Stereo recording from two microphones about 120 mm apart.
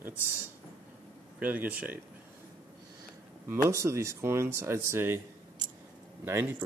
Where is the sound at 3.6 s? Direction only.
25° right (ahead or behind).